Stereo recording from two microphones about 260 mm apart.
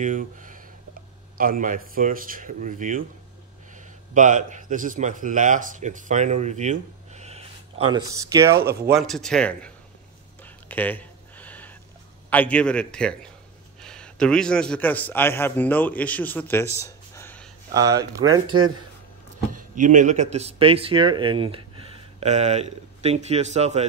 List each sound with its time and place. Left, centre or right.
0.0 s speech: right
7.9 s speech: centre
8.8 s a man's voice: centre
10.4 s whispering: centre
12.3 s a man's voice: centre
16.8 s a sound: centre
17.6 s speech: centre
19.5 s speech: right